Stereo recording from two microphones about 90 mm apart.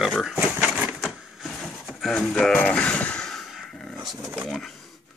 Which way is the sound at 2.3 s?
15° left (ahead or behind).